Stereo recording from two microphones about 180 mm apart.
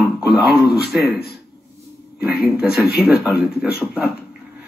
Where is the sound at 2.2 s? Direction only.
5° right (ahead or behind).